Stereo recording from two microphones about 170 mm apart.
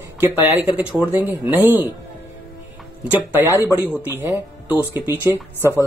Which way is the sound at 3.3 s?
15° right (ahead or behind).